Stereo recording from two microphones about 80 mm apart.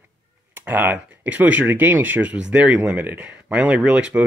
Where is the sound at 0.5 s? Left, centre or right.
Right.